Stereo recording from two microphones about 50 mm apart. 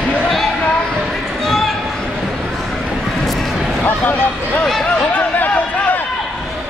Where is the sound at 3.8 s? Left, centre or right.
Left.